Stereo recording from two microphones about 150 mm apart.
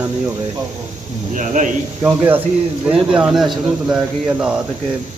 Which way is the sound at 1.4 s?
60° right (ahead or behind).